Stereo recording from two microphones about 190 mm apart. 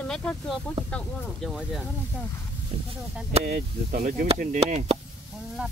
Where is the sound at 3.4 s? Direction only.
50° right (ahead or behind).